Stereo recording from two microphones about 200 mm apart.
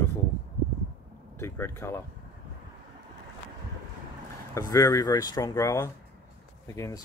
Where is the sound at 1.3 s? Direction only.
10° left (ahead or behind).